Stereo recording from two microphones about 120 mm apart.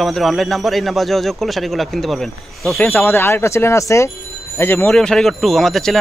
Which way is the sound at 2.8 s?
15° left (ahead or behind).